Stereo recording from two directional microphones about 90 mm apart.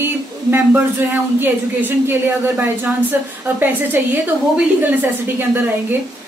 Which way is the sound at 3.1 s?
20° right (ahead or behind).